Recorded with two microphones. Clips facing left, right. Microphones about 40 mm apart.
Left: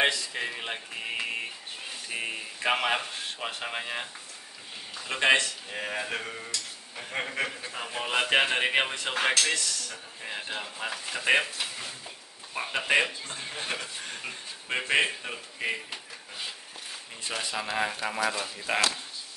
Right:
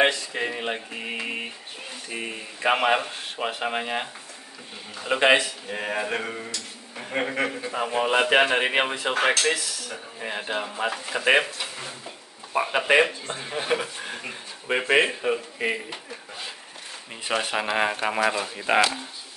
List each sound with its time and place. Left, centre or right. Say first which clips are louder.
0.0 s speech: right 4 dB; centre
2.0 s speech: right 1 dB; centre
2.6 s speech: right 5 dB; centre
9.6 s speech: right 1 dB; centre
10.2 s speech: right 6 dB; right
17.4 s speech: right 5 dB; right